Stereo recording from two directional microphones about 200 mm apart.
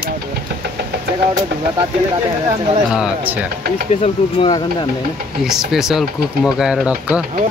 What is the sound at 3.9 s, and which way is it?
Speech, 30° left (ahead or behind).